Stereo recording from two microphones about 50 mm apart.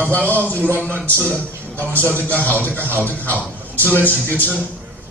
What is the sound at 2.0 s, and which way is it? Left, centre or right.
Speech, right.